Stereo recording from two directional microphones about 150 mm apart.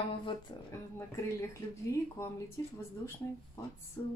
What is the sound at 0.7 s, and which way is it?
Speech, 20° left (ahead or behind).